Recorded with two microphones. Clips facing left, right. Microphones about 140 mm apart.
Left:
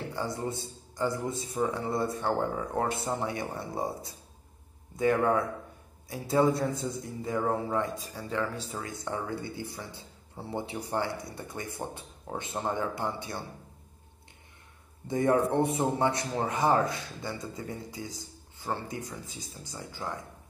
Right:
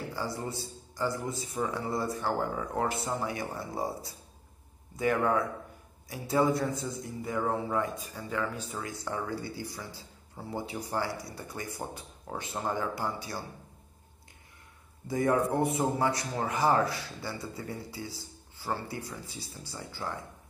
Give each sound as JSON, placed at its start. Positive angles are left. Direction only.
{"t": 0.1, "sound": "a man's voice", "side_deg": 20}
{"t": 15.0, "sound": "a man's voice", "side_deg": 25}